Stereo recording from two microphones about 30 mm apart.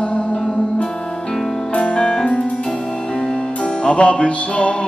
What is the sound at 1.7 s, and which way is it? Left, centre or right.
Music, left.